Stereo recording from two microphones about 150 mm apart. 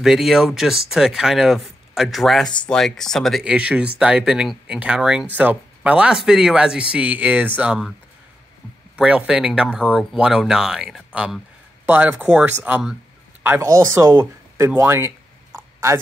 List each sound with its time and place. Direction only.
0.0 s speech: 5° right (ahead or behind)
8.9 s speech: 10° right (ahead or behind)